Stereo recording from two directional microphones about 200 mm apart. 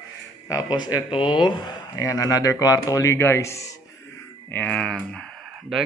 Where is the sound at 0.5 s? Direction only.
20° left (ahead or behind).